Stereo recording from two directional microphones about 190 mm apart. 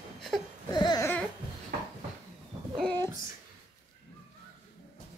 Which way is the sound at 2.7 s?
5° left (ahead or behind).